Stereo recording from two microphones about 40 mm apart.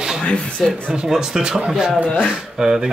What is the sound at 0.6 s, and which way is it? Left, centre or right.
Speech, centre.